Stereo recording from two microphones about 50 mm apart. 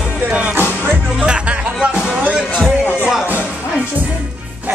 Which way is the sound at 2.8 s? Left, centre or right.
Left.